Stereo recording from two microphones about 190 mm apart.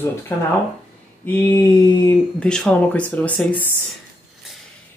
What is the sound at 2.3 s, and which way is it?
Speech, 5° left (ahead or behind).